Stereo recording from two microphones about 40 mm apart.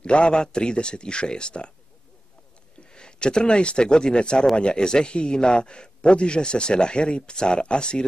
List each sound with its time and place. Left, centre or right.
0.0 s a man's voice: left
2.9 s a man's voice: left